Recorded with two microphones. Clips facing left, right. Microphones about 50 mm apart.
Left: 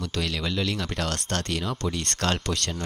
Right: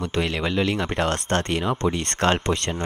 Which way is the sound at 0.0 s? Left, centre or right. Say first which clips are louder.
Right 5 dB; right.